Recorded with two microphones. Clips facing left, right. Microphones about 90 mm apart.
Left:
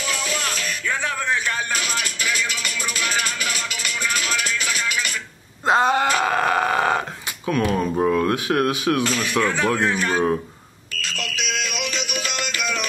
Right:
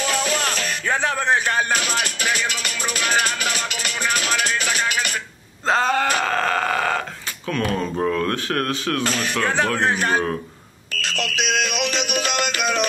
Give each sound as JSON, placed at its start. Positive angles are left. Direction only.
{"t": 0.0, "sound": "music", "side_deg": -45}
{"t": 5.7, "sound": "a sound", "side_deg": 20}
{"t": 7.4, "sound": "speech", "side_deg": 15}
{"t": 9.0, "sound": "a man's voice", "side_deg": -45}
{"t": 11.2, "sound": "music", "side_deg": -50}